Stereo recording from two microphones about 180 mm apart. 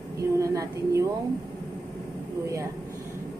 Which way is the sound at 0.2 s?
15° right (ahead or behind).